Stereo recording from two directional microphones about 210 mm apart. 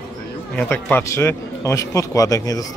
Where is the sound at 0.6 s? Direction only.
10° left (ahead or behind).